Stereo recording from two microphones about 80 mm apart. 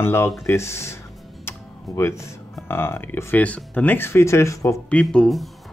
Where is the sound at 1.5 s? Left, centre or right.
Left.